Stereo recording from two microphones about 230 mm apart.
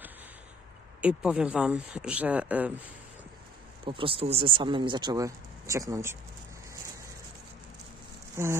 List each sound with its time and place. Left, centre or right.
1.0 s speech: centre
3.8 s speech: right
8.4 s speech: centre